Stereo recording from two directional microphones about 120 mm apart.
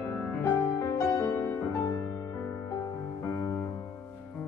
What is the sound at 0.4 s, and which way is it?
Music, 20° left (ahead or behind).